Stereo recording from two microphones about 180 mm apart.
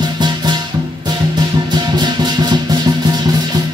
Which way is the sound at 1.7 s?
25° right (ahead or behind).